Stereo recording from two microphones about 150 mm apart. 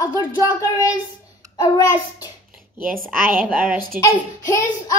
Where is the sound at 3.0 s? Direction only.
65° right (ahead or behind).